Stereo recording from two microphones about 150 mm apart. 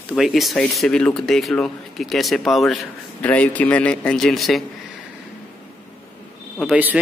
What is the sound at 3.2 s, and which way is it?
A man's voice, 10° left (ahead or behind).